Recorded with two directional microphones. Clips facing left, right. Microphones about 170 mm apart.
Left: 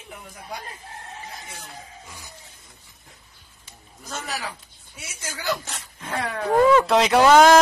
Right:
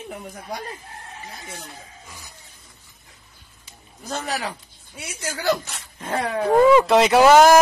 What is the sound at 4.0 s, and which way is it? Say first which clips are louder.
Speech: right 5 dB; 35° right (ahead or behind).